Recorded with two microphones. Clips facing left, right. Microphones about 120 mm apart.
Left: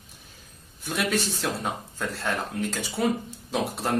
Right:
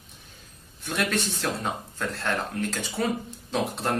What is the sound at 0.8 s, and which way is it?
Speech, 5° left (ahead or behind).